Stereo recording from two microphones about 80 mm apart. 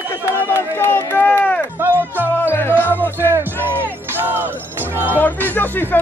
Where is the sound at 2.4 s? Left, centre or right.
Left.